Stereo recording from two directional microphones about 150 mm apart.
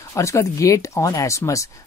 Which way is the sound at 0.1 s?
20° left (ahead or behind).